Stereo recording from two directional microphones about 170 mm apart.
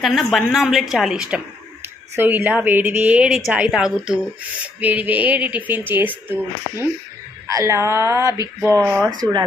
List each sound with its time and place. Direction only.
0.0 s a woman's voice: centre (ahead or behind); by 9.1 s 20° right (ahead or behind)